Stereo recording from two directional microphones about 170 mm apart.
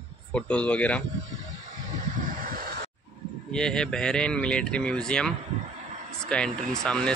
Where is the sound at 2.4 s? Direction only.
60° right (ahead or behind).